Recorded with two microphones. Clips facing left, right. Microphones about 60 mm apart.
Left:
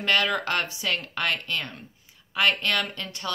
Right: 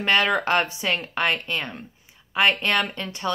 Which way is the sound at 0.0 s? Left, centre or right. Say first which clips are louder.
Right 3 dB; right.